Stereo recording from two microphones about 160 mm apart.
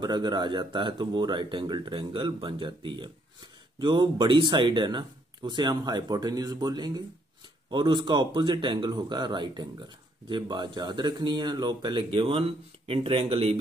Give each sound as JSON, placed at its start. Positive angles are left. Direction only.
{"t": 0.0, "sound": "speech", "side_deg": -25}